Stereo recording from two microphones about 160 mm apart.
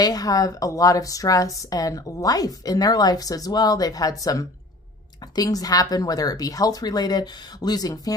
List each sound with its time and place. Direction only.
0.0 s a woman's voice: 25° left (ahead or behind)